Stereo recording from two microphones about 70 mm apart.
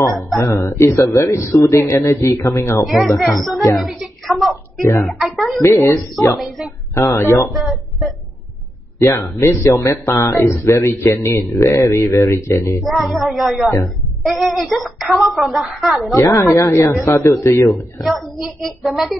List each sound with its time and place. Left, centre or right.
0.4 s a man's voice: left
2.8 s speech: centre
3.7 s a sound: centre
5.0 s speech: centre
5.6 s a man's voice: left
6.3 s speech: centre
7.1 s a man's voice: left
9.0 s a man's voice: left
12.8 s speech: centre
16.2 s a man's voice: left
18.0 s speech: centre